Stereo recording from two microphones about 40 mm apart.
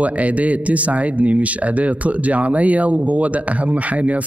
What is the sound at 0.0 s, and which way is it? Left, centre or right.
Speech, right.